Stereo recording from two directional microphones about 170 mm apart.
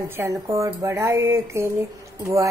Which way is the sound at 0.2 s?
20° right (ahead or behind).